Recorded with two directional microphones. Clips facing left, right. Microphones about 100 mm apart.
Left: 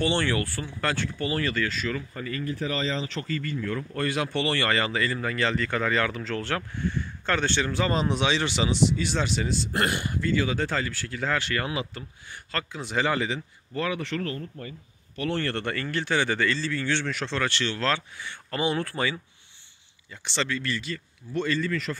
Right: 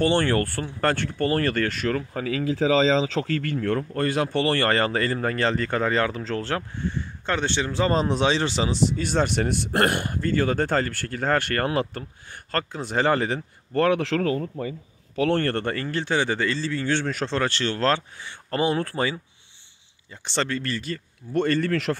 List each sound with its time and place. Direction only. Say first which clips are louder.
0.0 s speech: right 4 dB; 45° right (ahead or behind); by 3.5 s 75° right (ahead or behind)
3.9 s speech: right 4 dB; 35° right (ahead or behind)
13.7 s speech: right 8 dB; 65° right (ahead or behind)
15.2 s speech: right 5 dB; 50° right (ahead or behind)
20.2 s speech: right 3 dB; 45° right (ahead or behind); by 21.9 s 70° right (ahead or behind)